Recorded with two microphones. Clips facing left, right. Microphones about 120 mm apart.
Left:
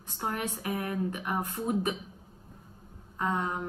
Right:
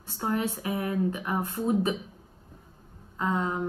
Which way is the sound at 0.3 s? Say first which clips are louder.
Right 5 dB; 25° right (ahead or behind).